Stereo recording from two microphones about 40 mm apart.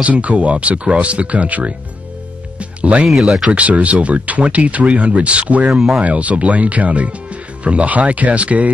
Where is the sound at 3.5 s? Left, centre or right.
Right.